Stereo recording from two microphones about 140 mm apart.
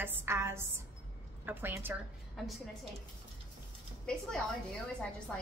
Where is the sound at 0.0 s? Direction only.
20° right (ahead or behind).